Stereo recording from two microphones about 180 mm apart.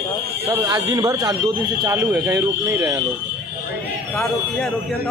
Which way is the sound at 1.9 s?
10° right (ahead or behind).